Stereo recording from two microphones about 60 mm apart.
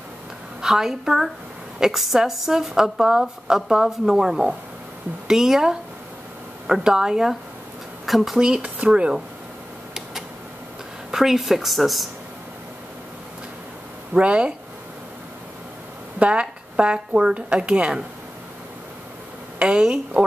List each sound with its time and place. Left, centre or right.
0.6 s a woman's voice: centre
8.4 s speech: centre
11.1 s a woman's voice: centre
14.1 s speech: centre
16.2 s speech: centre
19.6 s speech: centre